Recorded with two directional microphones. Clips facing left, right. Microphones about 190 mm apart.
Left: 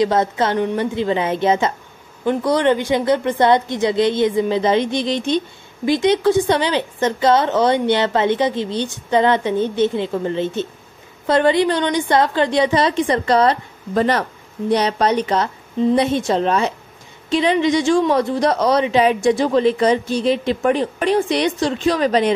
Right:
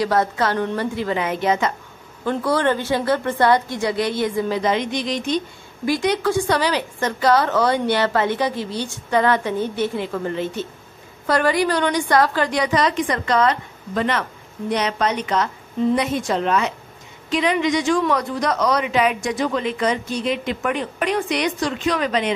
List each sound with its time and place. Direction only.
0.0 s a woman's voice: 20° left (ahead or behind)